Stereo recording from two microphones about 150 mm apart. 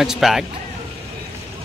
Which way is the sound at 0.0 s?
Centre (ahead or behind).